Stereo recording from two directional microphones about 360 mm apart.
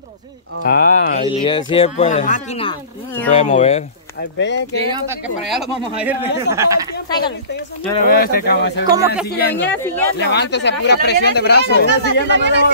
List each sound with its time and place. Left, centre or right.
0.7 s speech: left
4.4 s speech: left
5.5 s a man's voice: centre
8.1 s speech: left
8.9 s a man's voice: centre
9.3 s speech: left
9.8 s a man's voice: centre
10.1 s speech: left
12.0 s speech: right